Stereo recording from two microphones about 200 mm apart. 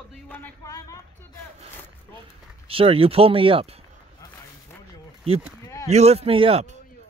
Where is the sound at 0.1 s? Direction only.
10° left (ahead or behind).